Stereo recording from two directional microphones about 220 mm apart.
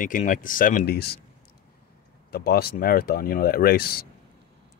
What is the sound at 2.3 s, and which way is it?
Speech, 45° left (ahead or behind).